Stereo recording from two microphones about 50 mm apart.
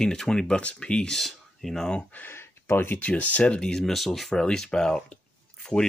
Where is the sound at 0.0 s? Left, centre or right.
Centre.